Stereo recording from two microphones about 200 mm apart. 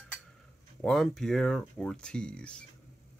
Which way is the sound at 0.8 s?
Centre (ahead or behind).